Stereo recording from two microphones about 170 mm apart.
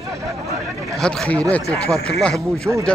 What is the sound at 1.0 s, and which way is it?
Speech, 5° left (ahead or behind).